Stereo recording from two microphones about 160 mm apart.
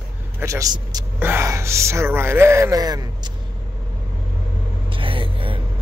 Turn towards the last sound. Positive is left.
turn(degrees=-35)  # may be behind; listen again after turning